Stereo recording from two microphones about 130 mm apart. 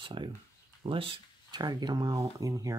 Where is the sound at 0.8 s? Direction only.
40° right (ahead or behind).